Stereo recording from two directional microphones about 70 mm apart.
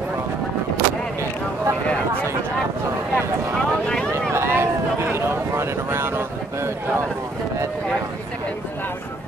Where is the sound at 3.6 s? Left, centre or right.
Centre.